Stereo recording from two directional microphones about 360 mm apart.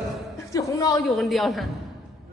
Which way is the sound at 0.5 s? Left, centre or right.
Centre.